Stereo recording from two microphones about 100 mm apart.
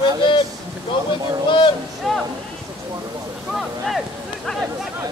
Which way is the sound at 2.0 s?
Centre (ahead or behind).